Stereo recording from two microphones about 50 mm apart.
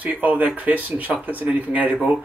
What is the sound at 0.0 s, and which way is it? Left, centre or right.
Speech, right.